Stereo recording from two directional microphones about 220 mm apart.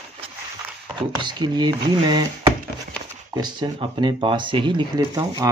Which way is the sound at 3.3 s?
20° right (ahead or behind).